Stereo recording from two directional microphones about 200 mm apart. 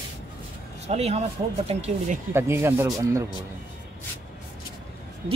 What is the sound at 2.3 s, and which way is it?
Speech, 10° right (ahead or behind).